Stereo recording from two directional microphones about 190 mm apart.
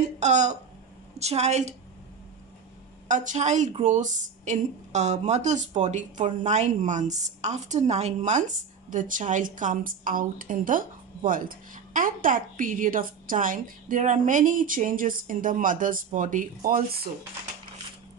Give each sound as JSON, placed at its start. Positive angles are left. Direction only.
{"t": 0.0, "sound": "a woman's voice", "side_deg": -40}
{"t": 3.1, "sound": "a woman's voice", "side_deg": -40}